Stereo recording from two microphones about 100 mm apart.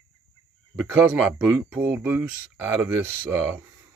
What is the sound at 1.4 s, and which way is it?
Speech, 20° right (ahead or behind).